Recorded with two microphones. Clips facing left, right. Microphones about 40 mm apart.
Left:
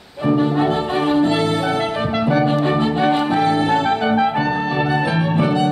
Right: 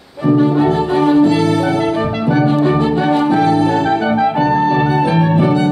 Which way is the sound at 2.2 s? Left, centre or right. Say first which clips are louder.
Right 1 dB; centre.